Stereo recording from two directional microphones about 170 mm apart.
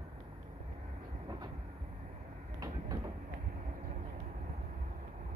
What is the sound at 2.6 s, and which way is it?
Train, 20° right (ahead or behind).